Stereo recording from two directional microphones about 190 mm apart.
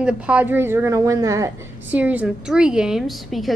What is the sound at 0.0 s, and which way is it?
A woman's voice, 5° right (ahead or behind).